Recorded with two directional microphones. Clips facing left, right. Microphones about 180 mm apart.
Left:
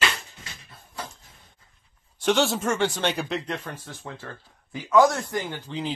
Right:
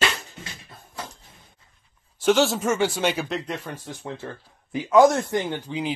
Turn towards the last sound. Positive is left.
turn(degrees=-15)  # may be behind; listen again after turning